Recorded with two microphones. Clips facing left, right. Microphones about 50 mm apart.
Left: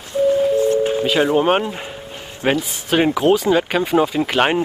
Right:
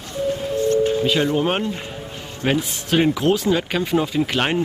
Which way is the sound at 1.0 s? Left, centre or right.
Centre.